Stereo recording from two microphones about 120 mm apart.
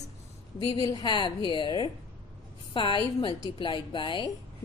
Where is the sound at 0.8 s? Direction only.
35° left (ahead or behind).